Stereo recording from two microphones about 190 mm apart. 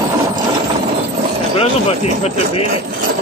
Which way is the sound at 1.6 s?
30° left (ahead or behind).